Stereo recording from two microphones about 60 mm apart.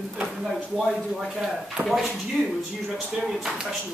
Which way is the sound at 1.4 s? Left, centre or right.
Centre.